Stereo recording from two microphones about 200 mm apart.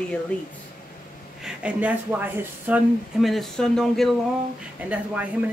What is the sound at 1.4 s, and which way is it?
Speech, 5° right (ahead or behind).